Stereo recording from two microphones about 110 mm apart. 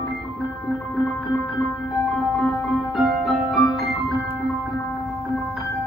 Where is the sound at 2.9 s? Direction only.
Centre (ahead or behind).